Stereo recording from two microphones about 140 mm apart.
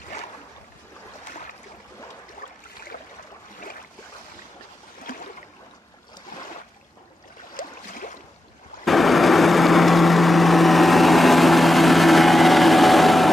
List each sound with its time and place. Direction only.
7.5 s boat: 75° left (ahead or behind)
8.8 s light engine: centre (ahead or behind)